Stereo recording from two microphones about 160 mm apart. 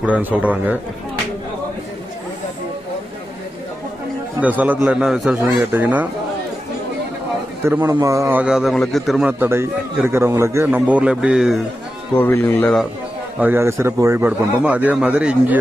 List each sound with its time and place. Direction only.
0.0 s a man's voice: 10° right (ahead or behind)
4.4 s a man's voice: 10° right (ahead or behind)
7.6 s a man's voice: 15° right (ahead or behind); by 9.3 s centre (ahead or behind)
9.4 s a man's voice: 15° right (ahead or behind)
12.2 s speech: 15° left (ahead or behind)
13.4 s a man's voice: 15° right (ahead or behind)